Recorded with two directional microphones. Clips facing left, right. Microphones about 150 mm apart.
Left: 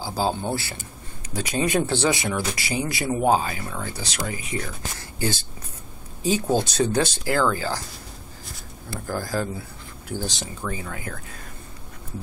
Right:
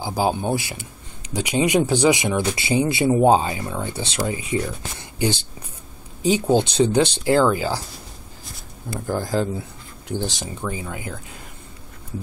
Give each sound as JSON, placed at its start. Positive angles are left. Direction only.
{"t": 0.0, "sound": "speech", "side_deg": -15}
{"t": 9.0, "sound": "speech", "side_deg": -20}